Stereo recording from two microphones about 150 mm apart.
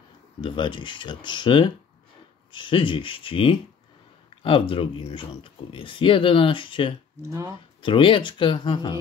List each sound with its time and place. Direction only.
0.4 s speech: 35° left (ahead or behind)
7.2 s speech: 20° right (ahead or behind)
7.8 s speech: 35° left (ahead or behind)